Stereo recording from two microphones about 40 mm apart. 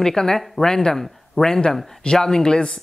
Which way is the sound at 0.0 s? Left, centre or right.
Centre.